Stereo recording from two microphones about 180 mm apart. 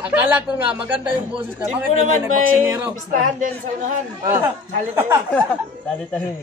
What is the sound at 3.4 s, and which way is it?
Speech, 45° right (ahead or behind).